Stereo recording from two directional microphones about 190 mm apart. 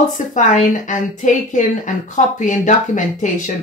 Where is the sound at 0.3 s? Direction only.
40° left (ahead or behind).